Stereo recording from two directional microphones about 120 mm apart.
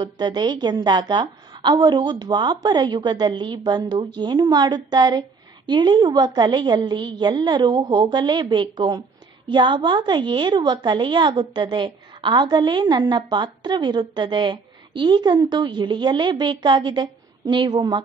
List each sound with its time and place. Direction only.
0.0 s a woman's voice: 35° right (ahead or behind)